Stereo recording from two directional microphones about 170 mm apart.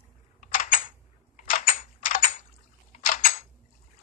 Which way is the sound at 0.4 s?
50° left (ahead or behind).